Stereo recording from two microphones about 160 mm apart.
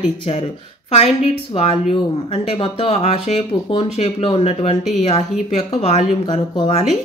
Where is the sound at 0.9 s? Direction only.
40° left (ahead or behind).